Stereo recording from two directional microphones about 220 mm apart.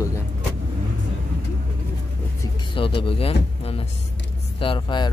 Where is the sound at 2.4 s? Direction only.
25° left (ahead or behind).